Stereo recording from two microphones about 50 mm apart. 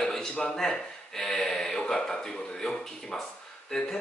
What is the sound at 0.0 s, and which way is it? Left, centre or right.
A man's voice, centre.